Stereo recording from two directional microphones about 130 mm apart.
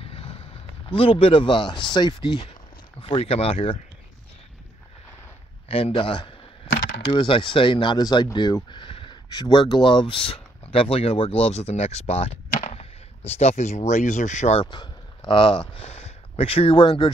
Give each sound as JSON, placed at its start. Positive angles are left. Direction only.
{"t": 0.0, "sound": "a sound", "side_deg": 45}
{"t": 0.8, "sound": "speech", "side_deg": 45}
{"t": 5.7, "sound": "speech", "side_deg": 45}
{"t": 13.4, "sound": "speech", "side_deg": 60}
{"t": 14.6, "sound": "speech", "side_deg": 35}
{"t": 15.7, "sound": "speech", "side_deg": 50}